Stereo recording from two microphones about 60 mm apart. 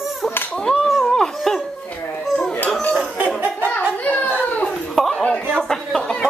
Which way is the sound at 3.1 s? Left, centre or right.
Right.